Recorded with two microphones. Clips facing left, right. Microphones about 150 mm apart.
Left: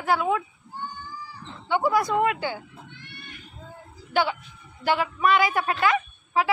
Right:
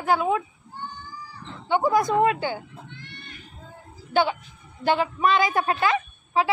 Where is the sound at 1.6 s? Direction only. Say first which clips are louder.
Right 2 dB; 20° right (ahead or behind).